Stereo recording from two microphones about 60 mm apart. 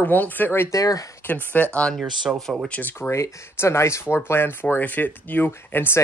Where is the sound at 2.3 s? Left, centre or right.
Right.